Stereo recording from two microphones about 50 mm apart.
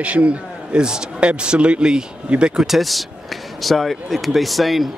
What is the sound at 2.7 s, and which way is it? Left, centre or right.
Speech, centre.